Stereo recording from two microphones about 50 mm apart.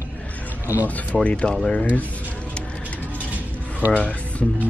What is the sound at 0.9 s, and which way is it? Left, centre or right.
Speech, left.